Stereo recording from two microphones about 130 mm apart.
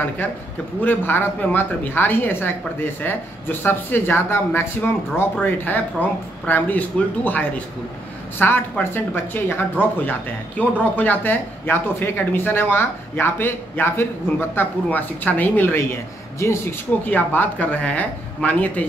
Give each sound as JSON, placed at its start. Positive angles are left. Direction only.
{"t": 0.7, "sound": "a man's voice", "side_deg": 15}